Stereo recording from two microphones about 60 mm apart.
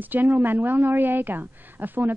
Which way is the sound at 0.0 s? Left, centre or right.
Right.